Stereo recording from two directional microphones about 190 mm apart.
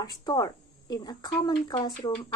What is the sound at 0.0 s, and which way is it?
Speech, 20° left (ahead or behind).